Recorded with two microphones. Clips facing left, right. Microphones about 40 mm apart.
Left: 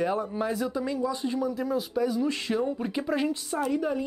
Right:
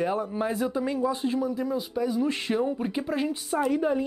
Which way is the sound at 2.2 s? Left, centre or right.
Right.